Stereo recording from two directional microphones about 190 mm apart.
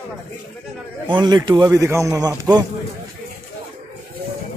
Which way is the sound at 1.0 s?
25° right (ahead or behind).